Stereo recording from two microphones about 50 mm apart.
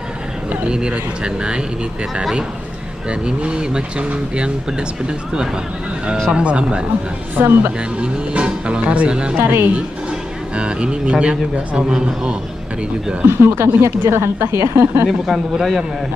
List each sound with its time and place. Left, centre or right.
0.7 s speech: centre
3.1 s speech: right
7.3 s speech: right
8.0 s speech: right
9.4 s speech: right
10.5 s speech: centre
13.3 s speech: right
15.0 s a man's voice: centre